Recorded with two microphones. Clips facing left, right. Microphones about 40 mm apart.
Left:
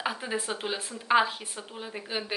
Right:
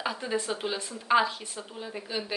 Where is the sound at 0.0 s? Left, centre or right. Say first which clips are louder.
Right 1 dB; centre.